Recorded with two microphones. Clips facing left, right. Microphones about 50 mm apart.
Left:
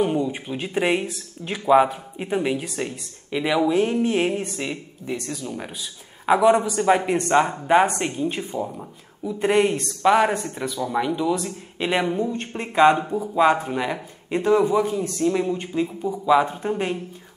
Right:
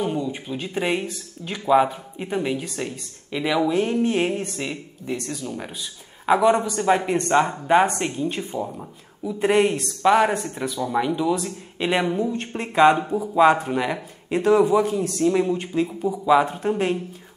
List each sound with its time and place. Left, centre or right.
0.0 s speech: centre